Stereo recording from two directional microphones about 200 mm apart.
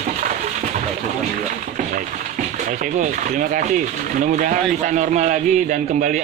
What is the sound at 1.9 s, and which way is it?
Speech, 40° right (ahead or behind).